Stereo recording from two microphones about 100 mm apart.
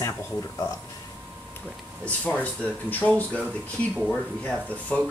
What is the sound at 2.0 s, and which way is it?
Speech, 15° left (ahead or behind).